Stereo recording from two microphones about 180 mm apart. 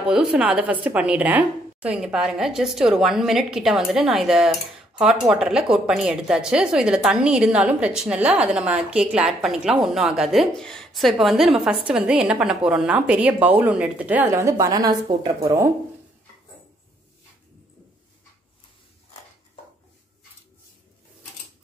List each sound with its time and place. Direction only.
0.0 s a woman's voice: 5° right (ahead or behind)